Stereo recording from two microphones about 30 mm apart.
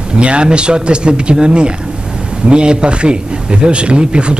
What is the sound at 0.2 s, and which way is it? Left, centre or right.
Speech, right.